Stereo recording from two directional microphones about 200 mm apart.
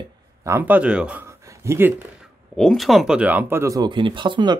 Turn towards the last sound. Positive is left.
turn(degrees=-25)  # may be behind; listen again after turning